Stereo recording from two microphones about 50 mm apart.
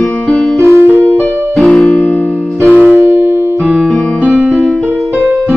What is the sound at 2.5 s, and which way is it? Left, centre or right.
Music, right.